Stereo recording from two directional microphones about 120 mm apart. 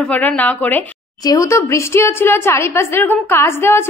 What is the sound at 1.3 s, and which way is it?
A woman's voice, 25° left (ahead or behind).